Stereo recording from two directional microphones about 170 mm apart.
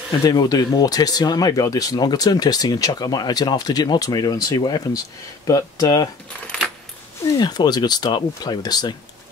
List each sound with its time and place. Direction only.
0.2 s speech: 20° left (ahead or behind)
7.3 s speech: 25° left (ahead or behind)